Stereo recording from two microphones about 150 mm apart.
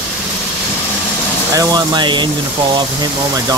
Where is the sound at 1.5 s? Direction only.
25° right (ahead or behind).